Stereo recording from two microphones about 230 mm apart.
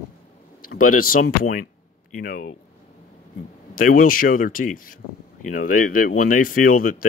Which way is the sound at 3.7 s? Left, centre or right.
Left.